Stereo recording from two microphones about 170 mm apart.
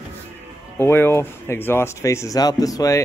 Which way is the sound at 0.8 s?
15° left (ahead or behind).